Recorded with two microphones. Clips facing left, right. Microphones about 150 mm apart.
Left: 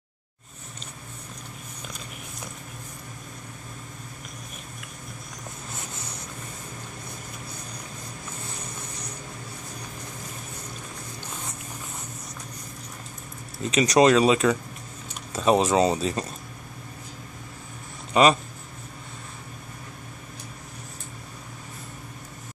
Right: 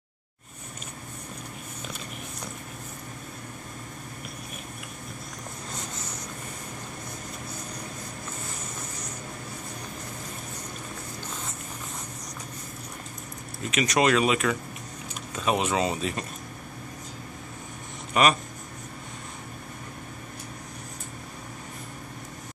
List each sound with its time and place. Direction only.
13.7 s speech: 30° left (ahead or behind)
18.1 s speech: 30° left (ahead or behind)